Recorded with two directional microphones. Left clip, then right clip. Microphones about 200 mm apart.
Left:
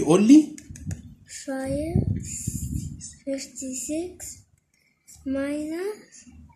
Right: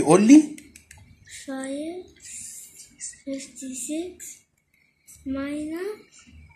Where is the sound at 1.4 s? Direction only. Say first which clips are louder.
Left 3 dB; 45° left (ahead or behind).